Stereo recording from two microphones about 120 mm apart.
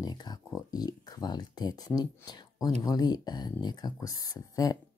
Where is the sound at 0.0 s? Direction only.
35° left (ahead or behind).